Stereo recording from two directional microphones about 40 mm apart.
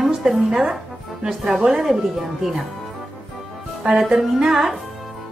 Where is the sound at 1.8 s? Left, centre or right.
Centre.